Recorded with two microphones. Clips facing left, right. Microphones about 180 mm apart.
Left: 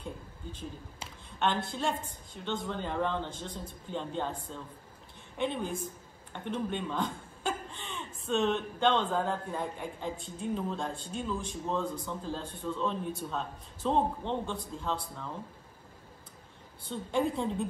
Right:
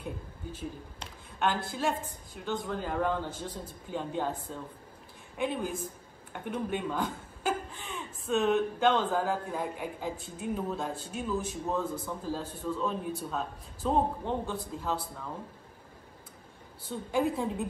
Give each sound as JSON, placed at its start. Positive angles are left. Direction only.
{"t": 0.0, "sound": "a sound", "side_deg": -10}
{"t": 1.7, "sound": "speech", "side_deg": -5}
{"t": 16.9, "sound": "speech", "side_deg": -5}